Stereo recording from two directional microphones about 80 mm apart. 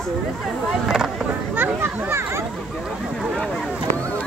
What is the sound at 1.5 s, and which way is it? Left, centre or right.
Speech, right.